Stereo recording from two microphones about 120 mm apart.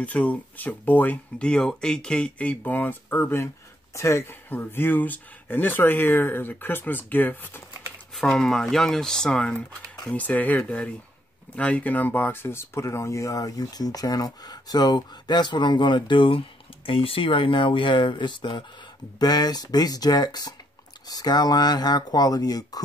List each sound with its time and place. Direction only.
0.0 s speech: 10° left (ahead or behind)
8.1 s speech: 5° left (ahead or behind); by 22.8 s 30° left (ahead or behind)